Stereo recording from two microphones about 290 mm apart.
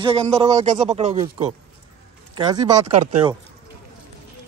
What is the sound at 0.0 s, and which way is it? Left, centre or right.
Speech, centre.